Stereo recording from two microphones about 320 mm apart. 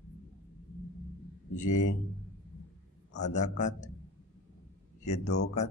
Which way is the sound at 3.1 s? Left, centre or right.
Left.